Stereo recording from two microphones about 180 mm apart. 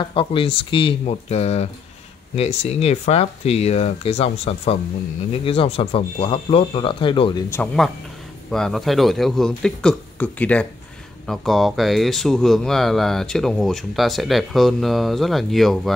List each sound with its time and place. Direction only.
0.0 s speech: 30° left (ahead or behind)
7.5 s speech: 5° left (ahead or behind)